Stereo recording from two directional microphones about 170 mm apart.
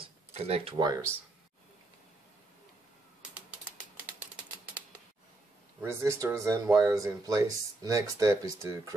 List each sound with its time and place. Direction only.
0.0 s a sound: 35° right (ahead or behind)
0.7 s speech: 20° right (ahead or behind)
5.8 s speech: 15° right (ahead or behind)